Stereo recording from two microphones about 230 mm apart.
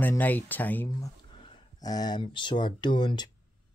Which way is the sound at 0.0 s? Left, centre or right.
Centre.